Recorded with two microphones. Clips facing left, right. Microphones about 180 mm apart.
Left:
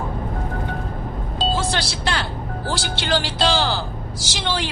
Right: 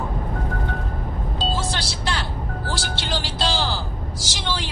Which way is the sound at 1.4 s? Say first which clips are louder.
Left 4 dB; 65° left (ahead or behind).